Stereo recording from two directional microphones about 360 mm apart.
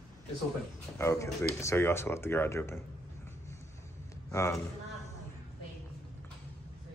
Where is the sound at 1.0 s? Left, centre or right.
Centre.